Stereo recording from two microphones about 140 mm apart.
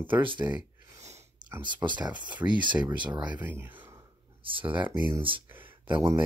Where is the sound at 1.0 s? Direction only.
55° right (ahead or behind).